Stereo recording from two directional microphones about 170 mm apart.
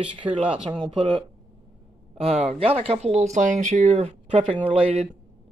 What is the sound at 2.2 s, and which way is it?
Speech, 35° right (ahead or behind).